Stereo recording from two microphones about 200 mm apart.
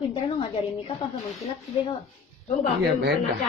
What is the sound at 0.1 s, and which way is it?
Speech, 30° left (ahead or behind).